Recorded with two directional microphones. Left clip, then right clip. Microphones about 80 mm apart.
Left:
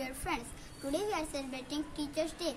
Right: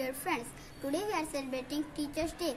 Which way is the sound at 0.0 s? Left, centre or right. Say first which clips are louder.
Right 3 dB; left.